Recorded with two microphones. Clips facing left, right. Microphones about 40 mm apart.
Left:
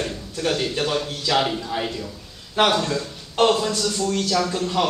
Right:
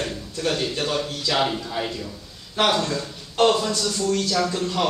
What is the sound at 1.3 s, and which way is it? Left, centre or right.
Speech, centre.